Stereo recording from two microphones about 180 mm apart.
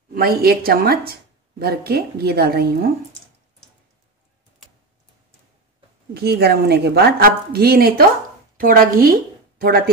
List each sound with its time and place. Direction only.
0.1 s a woman's voice: 55° right (ahead or behind)
6.1 s a woman's voice: 60° right (ahead or behind)